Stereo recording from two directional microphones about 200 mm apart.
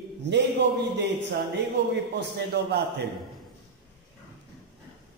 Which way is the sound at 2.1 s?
55° right (ahead or behind).